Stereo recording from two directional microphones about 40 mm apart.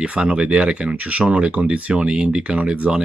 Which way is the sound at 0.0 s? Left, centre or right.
Right.